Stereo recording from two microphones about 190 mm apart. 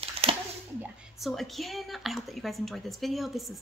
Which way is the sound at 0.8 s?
Centre (ahead or behind).